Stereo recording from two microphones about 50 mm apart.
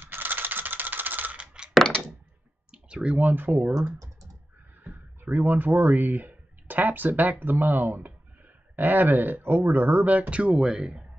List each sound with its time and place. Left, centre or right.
0.0 s typewriter: right
1.4 s a sound: centre
2.7 s clicking: centre
3.2 s speech: right
4.8 s speech: right
10.1 s speech: right